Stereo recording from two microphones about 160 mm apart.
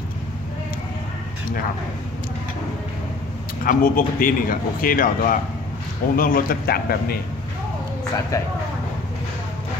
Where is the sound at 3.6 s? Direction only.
60° left (ahead or behind).